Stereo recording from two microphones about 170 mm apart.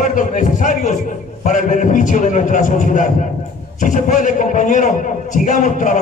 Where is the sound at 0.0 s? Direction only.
50° left (ahead or behind).